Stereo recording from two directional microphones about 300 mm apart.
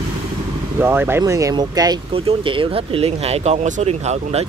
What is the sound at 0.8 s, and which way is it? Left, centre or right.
Speech, centre.